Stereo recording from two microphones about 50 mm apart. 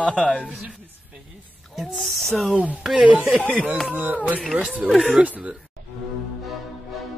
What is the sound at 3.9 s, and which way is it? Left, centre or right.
Speech, right.